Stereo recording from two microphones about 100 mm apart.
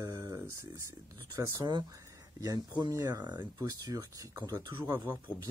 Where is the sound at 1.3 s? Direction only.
35° right (ahead or behind).